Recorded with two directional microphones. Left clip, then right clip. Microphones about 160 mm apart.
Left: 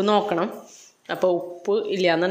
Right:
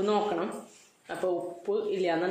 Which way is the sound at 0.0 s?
50° left (ahead or behind).